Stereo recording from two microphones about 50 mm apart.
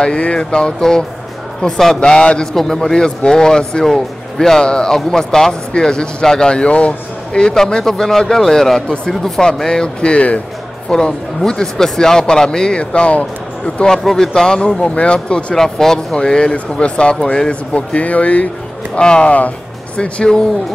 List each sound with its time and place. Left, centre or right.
0.0 s speech: left
2.0 s speech: left
2.5 s speech: centre; by 10.4 s left
10.9 s speech: centre
14.0 s speech: centre; by 18.5 s left
18.9 s speech: centre